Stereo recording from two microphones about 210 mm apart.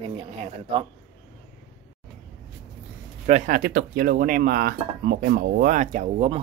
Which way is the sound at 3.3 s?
40° right (ahead or behind).